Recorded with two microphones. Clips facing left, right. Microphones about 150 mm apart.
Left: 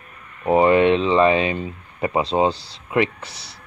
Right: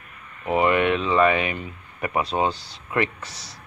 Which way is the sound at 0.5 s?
30° left (ahead or behind).